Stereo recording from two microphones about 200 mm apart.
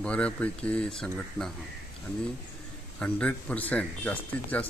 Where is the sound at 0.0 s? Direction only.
5° left (ahead or behind).